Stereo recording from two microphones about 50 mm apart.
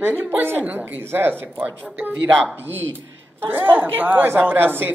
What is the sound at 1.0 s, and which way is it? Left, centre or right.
Speech, right.